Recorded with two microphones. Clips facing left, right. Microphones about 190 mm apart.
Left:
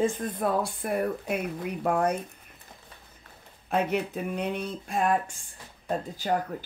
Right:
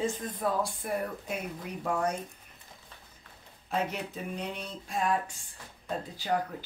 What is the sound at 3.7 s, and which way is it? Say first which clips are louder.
Speech: left 6 dB; 60° left (ahead or behind).